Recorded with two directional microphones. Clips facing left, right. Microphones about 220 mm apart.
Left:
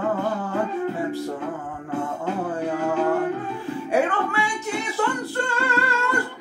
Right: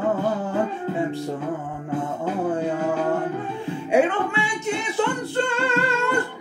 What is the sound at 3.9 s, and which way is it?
Speech, 20° right (ahead or behind).